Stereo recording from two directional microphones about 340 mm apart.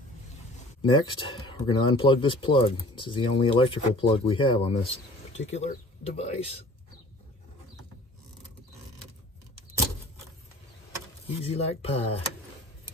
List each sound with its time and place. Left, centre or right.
0.8 s speech: centre
11.2 s speech: centre